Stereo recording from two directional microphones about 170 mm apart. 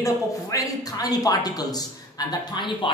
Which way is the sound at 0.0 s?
20° left (ahead or behind).